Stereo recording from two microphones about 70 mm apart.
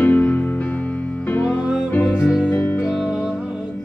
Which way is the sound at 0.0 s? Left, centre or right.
Left.